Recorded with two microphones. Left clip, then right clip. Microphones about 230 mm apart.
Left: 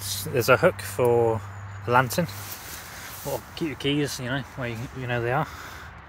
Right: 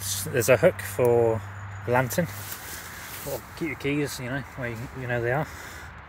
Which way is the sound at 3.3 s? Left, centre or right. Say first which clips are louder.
Left 1 dB; centre.